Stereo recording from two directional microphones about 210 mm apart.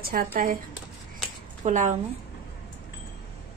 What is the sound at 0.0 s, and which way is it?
Speech, 45° right (ahead or behind).